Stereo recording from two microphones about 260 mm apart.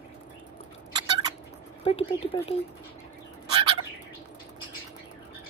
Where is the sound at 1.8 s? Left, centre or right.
Left.